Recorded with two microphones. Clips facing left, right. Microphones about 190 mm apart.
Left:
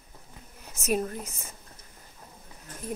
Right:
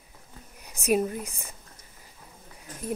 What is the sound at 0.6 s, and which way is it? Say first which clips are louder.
Speech: right 4 dB; 15° right (ahead or behind).